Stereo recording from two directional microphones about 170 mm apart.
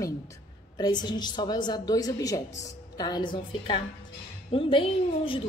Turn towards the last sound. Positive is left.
turn(degrees=30)  # may be behind; listen again after turning